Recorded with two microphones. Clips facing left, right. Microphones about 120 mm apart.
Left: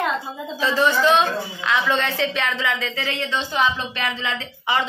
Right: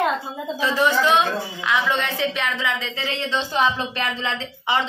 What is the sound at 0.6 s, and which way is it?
A woman's voice, 15° right (ahead or behind).